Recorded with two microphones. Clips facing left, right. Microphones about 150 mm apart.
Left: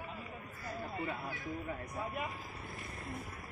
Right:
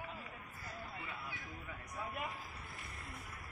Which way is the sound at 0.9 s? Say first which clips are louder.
Left 8 dB; 45° left (ahead or behind).